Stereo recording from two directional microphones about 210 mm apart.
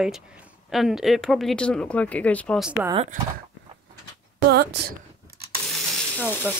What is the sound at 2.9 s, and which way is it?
Speech, 30° right (ahead or behind).